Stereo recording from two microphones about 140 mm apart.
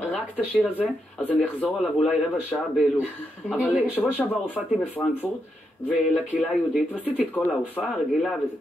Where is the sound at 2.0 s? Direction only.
5° right (ahead or behind).